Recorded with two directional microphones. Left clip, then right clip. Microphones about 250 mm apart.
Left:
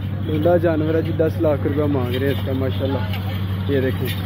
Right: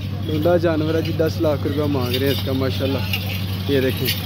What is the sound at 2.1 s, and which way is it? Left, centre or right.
Speech, centre.